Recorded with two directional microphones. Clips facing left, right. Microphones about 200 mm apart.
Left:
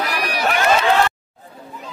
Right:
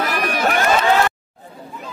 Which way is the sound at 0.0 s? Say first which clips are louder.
Right 2 dB; 50° right (ahead or behind).